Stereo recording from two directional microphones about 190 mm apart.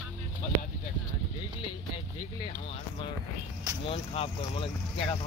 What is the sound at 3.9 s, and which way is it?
Speech, 30° left (ahead or behind).